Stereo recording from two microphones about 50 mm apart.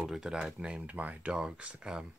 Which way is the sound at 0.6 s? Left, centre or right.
Right.